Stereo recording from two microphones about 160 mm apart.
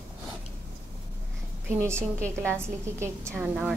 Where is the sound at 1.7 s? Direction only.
15° right (ahead or behind).